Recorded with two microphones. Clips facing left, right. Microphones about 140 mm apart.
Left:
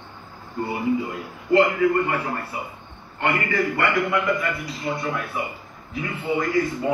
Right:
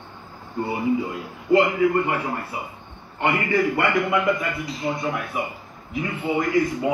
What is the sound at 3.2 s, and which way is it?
Speech, 20° right (ahead or behind).